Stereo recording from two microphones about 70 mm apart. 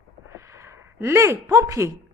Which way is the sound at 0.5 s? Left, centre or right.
Right.